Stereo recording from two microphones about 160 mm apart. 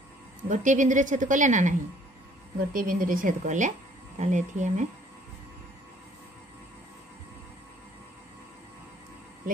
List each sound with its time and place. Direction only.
0.5 s a woman's voice: 50° right (ahead or behind)